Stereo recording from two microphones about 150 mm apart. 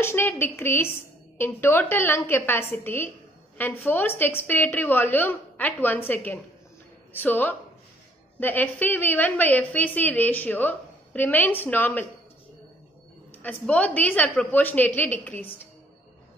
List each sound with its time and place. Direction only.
0.0 s a woman's voice: 15° left (ahead or behind)
13.3 s a woman's voice: 10° left (ahead or behind)